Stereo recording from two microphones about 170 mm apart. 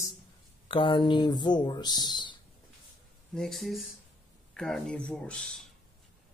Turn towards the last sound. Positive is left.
turn(degrees=5)  # may be behind; listen again after turning